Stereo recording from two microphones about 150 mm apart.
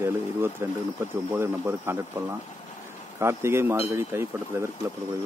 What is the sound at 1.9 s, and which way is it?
Speech, 15° right (ahead or behind).